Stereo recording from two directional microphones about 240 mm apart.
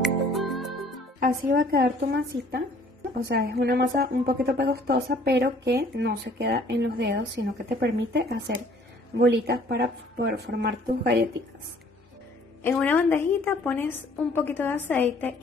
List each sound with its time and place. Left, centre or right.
0.3 s music: centre
1.2 s a woman's voice: right
12.6 s a woman's voice: centre